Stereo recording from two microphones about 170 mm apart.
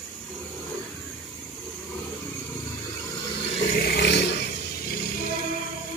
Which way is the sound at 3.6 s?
65° left (ahead or behind).